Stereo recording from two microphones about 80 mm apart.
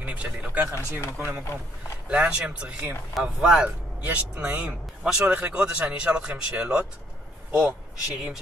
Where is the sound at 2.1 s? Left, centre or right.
Centre.